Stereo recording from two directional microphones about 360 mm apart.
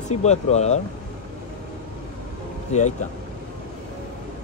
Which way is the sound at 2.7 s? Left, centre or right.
Centre.